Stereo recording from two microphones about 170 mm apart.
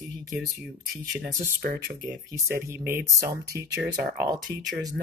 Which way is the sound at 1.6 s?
60° right (ahead or behind).